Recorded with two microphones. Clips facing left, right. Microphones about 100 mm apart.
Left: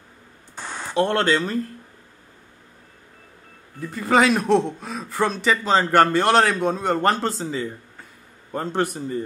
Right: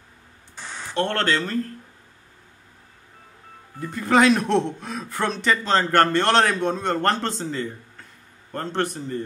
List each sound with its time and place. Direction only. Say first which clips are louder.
0.6 s a sound: left 4 dB; 50° left (ahead or behind)
0.9 s a man's voice: left 3 dB; 10° left (ahead or behind)
3.8 s a man's voice: even; centre (ahead or behind)